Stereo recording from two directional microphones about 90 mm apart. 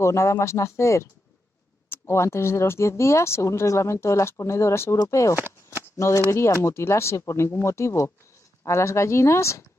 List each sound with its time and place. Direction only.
0.0 s speech: 35° left (ahead or behind)
5.4 s shuffling cards: 30° left (ahead or behind)
6.3 s speech: 30° left (ahead or behind)